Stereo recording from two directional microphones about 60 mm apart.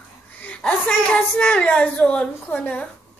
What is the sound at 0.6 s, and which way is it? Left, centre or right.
A woman's voice, centre.